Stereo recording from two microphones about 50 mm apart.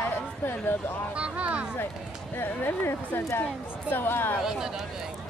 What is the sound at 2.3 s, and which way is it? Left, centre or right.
Speech, left.